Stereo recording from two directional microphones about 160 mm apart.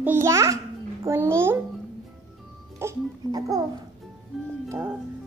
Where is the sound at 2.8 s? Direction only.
20° right (ahead or behind).